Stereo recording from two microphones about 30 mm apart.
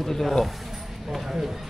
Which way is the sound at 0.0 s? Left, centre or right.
Centre.